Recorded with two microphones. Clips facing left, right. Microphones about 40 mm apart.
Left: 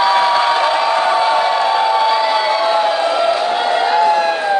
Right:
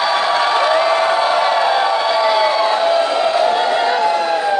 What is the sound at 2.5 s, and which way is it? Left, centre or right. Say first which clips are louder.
Crowd: even; centre.